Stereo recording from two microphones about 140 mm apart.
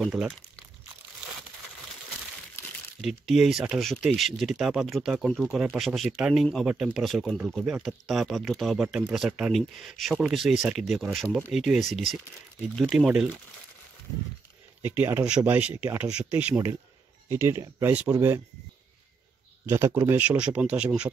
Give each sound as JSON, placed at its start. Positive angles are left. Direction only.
{"t": 0.0, "sound": "speech", "side_deg": 0}
{"t": 3.0, "sound": "speech", "side_deg": 0}
{"t": 14.9, "sound": "speech", "side_deg": -15}
{"t": 19.6, "sound": "speech", "side_deg": -15}